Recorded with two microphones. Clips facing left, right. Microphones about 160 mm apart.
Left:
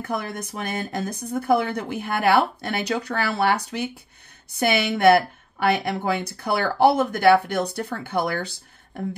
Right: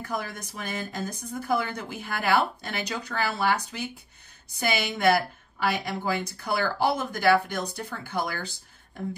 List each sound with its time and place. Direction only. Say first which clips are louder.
0.1 s a woman's voice: left 5 dB; 65° left (ahead or behind)